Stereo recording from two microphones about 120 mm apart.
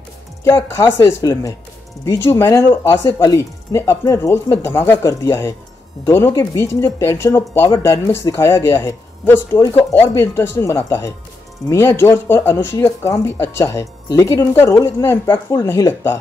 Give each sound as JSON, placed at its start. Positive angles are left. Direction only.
{"t": 0.4, "sound": "speech", "side_deg": 20}